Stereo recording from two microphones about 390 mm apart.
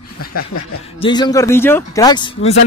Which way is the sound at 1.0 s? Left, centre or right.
Centre.